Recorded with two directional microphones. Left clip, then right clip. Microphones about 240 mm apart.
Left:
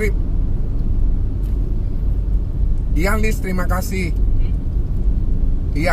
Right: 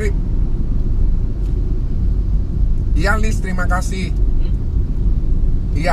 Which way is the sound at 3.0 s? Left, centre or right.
Left.